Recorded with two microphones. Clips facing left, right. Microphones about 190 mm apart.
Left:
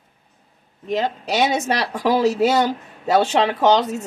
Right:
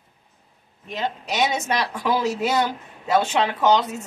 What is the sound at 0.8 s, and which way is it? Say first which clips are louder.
Speech: left 6 dB; 40° left (ahead or behind).